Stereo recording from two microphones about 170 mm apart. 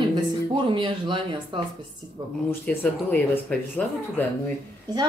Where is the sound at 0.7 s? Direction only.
30° right (ahead or behind).